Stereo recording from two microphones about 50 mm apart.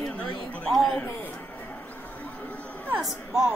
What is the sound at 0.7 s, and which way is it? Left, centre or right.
Speech, centre.